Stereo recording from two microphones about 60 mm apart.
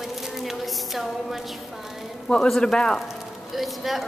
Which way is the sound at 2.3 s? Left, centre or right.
Centre.